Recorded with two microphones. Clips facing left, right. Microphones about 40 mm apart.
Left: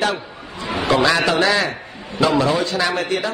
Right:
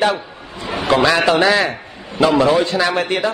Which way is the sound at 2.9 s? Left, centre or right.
Right.